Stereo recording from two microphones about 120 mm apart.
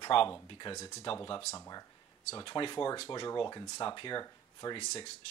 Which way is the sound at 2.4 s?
40° left (ahead or behind).